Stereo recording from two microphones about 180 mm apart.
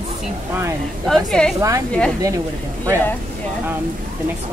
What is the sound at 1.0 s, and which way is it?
Speech, 5° left (ahead or behind).